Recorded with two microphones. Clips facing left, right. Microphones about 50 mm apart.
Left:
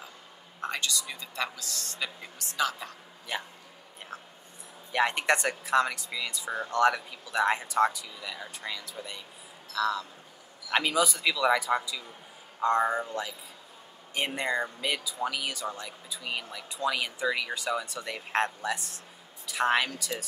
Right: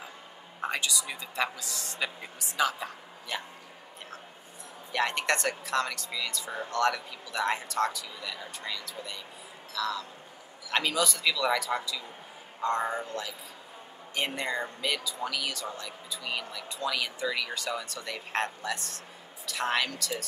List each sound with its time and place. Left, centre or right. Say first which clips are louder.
0.6 s a woman's voice: right 1 dB; centre
3.3 s speech: left 1 dB; centre
4.9 s speech: left 2 dB; centre